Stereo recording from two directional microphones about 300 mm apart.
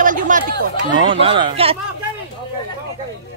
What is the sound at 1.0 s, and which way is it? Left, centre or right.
Speech, centre.